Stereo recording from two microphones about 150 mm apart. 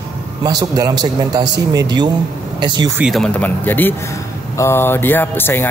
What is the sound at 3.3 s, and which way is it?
Speech, 10° left (ahead or behind).